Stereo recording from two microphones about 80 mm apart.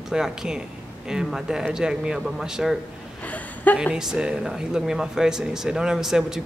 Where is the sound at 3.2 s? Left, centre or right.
Centre.